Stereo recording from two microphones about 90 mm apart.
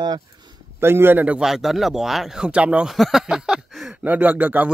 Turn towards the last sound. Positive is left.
turn(degrees=-20)  # may be behind; listen again after turning